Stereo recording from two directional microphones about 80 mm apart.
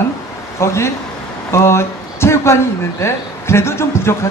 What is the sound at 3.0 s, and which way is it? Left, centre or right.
A woman's voice, left.